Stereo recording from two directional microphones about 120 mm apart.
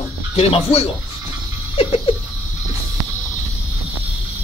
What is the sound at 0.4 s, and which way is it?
Speech, 55° left (ahead or behind).